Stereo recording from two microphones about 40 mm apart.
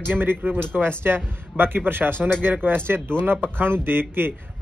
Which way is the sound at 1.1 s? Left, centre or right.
Right.